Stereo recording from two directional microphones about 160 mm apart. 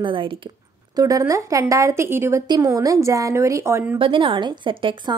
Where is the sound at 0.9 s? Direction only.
20° right (ahead or behind).